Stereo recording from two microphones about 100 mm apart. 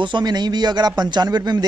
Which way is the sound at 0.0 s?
50° right (ahead or behind).